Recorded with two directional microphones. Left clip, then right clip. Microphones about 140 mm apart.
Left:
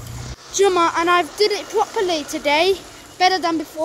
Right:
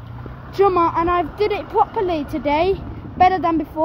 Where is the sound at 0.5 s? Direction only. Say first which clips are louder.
Even; 20° left (ahead or behind).